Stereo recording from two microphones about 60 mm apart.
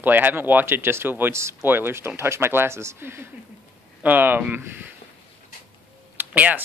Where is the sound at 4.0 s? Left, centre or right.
Right.